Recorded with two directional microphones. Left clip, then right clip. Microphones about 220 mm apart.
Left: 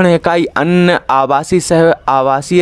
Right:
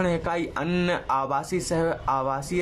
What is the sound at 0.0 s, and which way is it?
Speech, 40° left (ahead or behind).